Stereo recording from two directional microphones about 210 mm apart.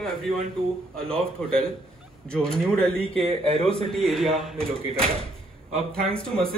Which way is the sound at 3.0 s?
25° right (ahead or behind).